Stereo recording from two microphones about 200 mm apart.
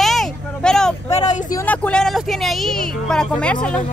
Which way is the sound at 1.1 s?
35° left (ahead or behind).